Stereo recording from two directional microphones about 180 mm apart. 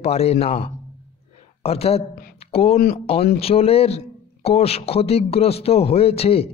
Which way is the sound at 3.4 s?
35° left (ahead or behind).